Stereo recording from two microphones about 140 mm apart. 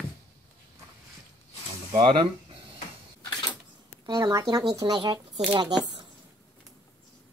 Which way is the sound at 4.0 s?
30° right (ahead or behind).